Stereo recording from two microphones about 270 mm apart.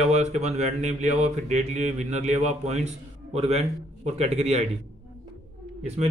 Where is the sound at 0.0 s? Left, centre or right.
Right.